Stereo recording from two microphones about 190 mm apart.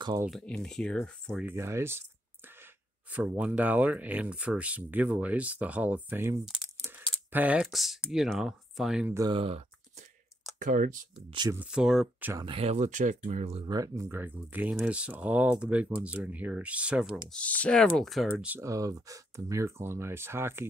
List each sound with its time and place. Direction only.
0.0 s speech: 20° right (ahead or behind)
0.3 s speech: 5° left (ahead or behind)
1.4 s speech: 15° right (ahead or behind)
9.1 s speech: 20° right (ahead or behind)
9.4 s a sound: 30° right (ahead or behind)
10.6 s speech: 45° right (ahead or behind)
11.2 s speech: 25° right (ahead or behind)
11.5 s speech: 5° right (ahead or behind)
12.4 s speech: 30° right (ahead or behind)
13.7 s speech: 15° right (ahead or behind)
17.3 s speech: 5° left (ahead or behind); by 20.6 s 10° right (ahead or behind)